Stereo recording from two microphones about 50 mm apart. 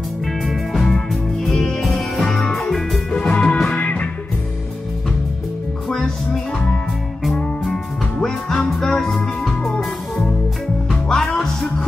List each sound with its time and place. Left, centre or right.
0.5 s music: centre
2.2 s music: centre
2.5 s music: centre
3.1 s music: left
5.9 s music: centre